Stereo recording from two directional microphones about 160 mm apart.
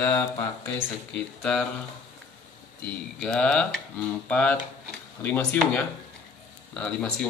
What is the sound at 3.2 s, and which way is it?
Speech, 5° left (ahead or behind).